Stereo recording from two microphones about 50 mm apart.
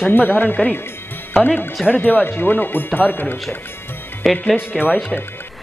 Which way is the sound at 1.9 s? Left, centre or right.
Left.